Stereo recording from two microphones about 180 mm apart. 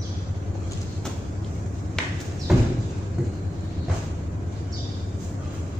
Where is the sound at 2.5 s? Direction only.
Centre (ahead or behind).